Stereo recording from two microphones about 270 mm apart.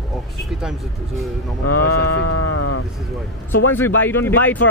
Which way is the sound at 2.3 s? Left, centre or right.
Left.